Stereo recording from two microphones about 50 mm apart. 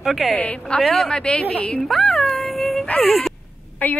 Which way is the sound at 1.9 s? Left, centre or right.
Centre.